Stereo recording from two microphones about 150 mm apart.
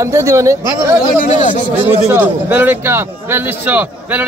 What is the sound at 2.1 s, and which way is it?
Speech, 15° right (ahead or behind).